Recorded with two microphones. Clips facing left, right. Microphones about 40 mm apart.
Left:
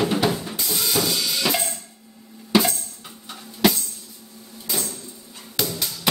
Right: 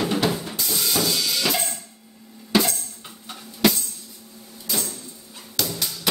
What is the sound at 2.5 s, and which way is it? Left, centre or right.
Tambourine, centre.